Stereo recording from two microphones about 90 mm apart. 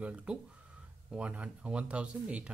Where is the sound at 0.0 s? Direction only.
15° right (ahead or behind).